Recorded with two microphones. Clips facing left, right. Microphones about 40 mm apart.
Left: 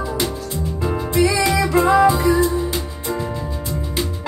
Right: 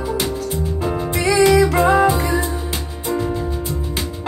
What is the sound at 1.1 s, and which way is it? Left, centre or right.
Music, right.